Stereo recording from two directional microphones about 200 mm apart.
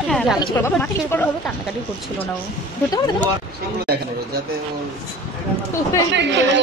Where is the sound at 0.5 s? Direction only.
10° left (ahead or behind).